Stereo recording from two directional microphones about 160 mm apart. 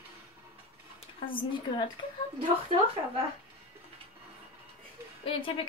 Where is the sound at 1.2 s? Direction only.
30° left (ahead or behind).